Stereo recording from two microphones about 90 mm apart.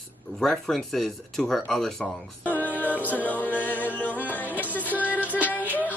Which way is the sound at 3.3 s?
20° left (ahead or behind).